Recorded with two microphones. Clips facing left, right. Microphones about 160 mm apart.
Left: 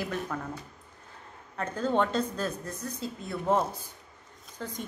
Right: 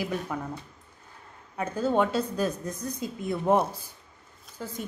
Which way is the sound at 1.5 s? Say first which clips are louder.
Right 2 dB; 10° right (ahead or behind).